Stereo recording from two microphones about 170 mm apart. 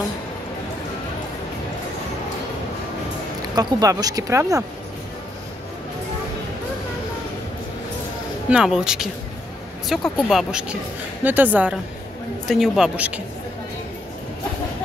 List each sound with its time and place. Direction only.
3.5 s speech: 20° right (ahead or behind)
8.5 s a woman's voice: 5° right (ahead or behind)